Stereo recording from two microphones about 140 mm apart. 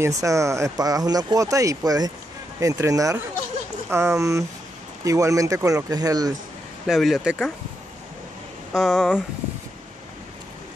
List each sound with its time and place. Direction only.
0.2 s speech: 20° right (ahead or behind)
6.9 s speech: centre (ahead or behind)
8.7 s speech: centre (ahead or behind)